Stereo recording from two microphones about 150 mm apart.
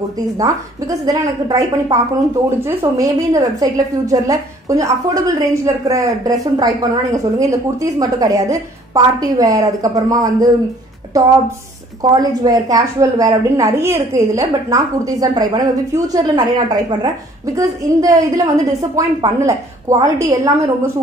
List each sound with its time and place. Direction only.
0.2 s a woman's voice: 25° right (ahead or behind)